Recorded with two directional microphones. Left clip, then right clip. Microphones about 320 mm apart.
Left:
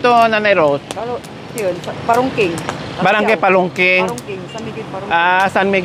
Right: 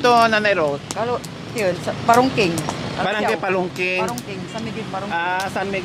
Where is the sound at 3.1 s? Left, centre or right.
Centre.